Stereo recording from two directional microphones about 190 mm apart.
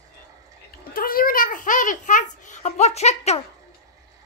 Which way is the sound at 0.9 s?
50° left (ahead or behind).